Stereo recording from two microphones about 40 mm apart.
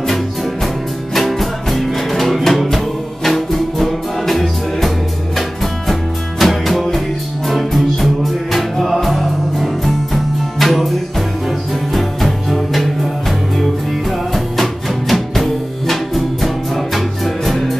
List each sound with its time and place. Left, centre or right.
1.1 s music: centre
6.4 s music: centre
14.3 s music: centre